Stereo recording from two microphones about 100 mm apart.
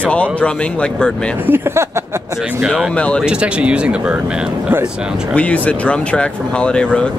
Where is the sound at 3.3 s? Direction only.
10° right (ahead or behind).